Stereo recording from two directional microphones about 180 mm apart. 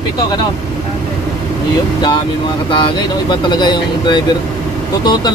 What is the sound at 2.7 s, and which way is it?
Speech, 25° left (ahead or behind).